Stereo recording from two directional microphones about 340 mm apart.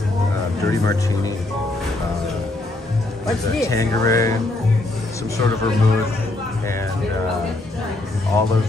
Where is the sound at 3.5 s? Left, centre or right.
Centre.